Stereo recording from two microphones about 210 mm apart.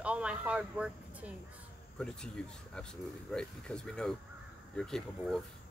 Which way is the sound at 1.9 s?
5° left (ahead or behind).